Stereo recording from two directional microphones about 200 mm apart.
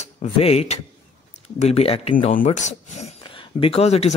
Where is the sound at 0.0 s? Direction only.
35° left (ahead or behind).